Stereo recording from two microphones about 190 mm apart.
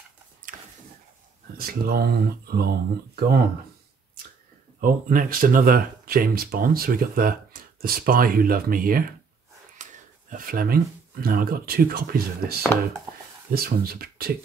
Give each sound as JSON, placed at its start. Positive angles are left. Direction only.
{"t": 1.6, "sound": "speech", "side_deg": -50}
{"t": 4.7, "sound": "speech", "side_deg": -45}
{"t": 9.8, "sound": "wheeze", "side_deg": -40}
{"t": 10.3, "sound": "speech", "side_deg": -50}